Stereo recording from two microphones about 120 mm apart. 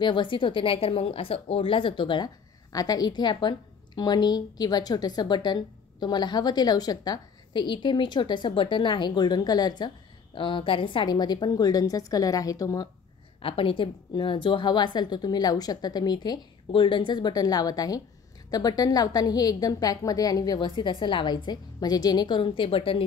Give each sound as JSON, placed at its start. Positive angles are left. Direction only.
{"t": 0.0, "sound": "speech", "side_deg": 40}
{"t": 13.4, "sound": "speech", "side_deg": 50}